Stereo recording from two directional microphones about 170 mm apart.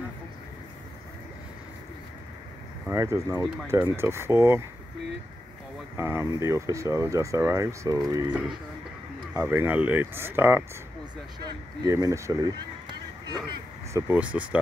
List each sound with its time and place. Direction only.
2.9 s speech: 15° right (ahead or behind)
5.9 s speech: 15° right (ahead or behind)
8.3 s speech: 5° right (ahead or behind)
13.3 s a sound: 25° right (ahead or behind)
14.0 s speech: 10° right (ahead or behind)